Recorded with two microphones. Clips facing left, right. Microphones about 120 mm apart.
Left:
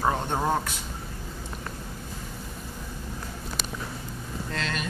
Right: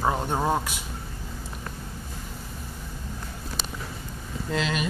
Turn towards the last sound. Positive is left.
turn(degrees=-5)  # may be behind; listen again after turning